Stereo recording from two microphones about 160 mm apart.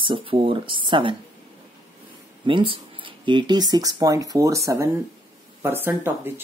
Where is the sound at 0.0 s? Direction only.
35° right (ahead or behind).